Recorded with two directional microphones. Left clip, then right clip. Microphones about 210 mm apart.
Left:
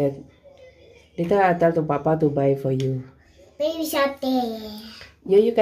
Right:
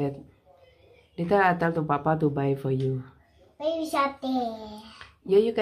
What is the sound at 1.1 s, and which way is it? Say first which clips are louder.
Speech: left 3 dB; 15° right (ahead or behind).